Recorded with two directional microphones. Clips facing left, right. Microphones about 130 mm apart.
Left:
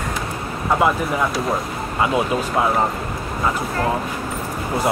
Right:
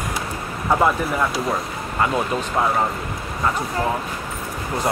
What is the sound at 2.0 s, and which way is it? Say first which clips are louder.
Speech: left 2 dB; 10° left (ahead or behind).